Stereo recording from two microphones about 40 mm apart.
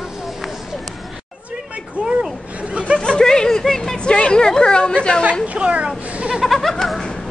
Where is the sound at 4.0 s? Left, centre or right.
Left.